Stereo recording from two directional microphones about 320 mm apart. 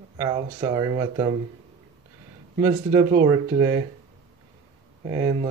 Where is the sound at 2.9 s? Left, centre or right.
Centre.